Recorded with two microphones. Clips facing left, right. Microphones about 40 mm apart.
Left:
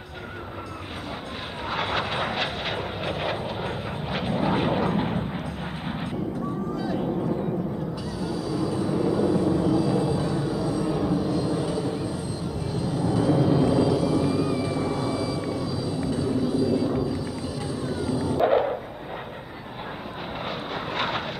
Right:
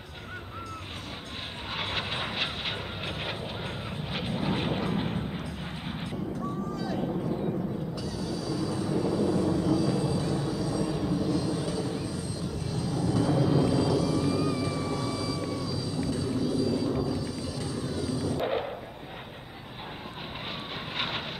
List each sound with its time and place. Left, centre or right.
1.7 s vehicle: centre
6.7 s vehicle: left
18.4 s dog: centre
20.9 s vehicle: centre